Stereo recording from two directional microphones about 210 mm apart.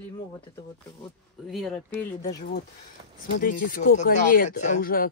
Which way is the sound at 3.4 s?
40° left (ahead or behind).